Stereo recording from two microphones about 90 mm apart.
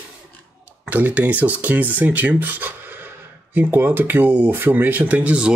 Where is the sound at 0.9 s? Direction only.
20° right (ahead or behind).